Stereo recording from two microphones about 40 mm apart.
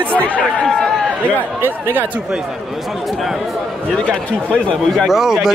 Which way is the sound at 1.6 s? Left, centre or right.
Right.